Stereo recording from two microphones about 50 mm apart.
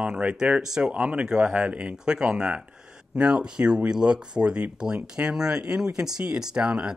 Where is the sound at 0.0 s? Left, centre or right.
Right.